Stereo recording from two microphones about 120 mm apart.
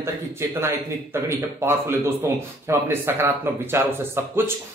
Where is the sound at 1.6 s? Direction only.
20° right (ahead or behind).